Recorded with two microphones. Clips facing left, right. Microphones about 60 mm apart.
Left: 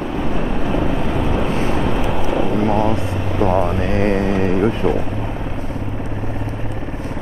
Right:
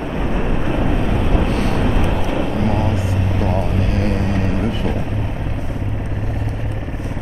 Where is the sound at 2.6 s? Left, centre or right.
Left.